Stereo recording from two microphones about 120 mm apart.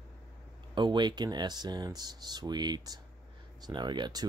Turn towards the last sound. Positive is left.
turn(degrees=-35)  # may be behind; listen again after turning